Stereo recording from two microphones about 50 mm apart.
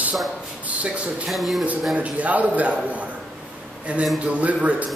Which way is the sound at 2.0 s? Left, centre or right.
Right.